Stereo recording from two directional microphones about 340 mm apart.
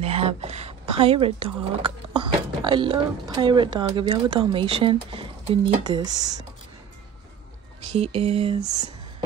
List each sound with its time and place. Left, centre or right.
0.0 s speech: centre
8.0 s speech: centre